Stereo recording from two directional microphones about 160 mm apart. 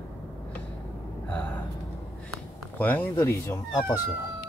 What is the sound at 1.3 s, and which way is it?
Gasp, 10° left (ahead or behind).